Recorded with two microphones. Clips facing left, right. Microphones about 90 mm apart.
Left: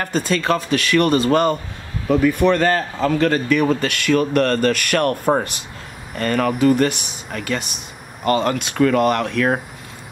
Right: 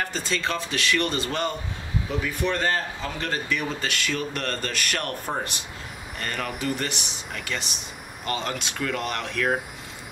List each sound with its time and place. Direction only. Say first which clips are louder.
0.0 s speech: left 7 dB; 50° left (ahead or behind)
2.0 s a man's voice: left 13 dB; 60° left (ahead or behind)
6.1 s speech: left 12 dB; 55° left (ahead or behind)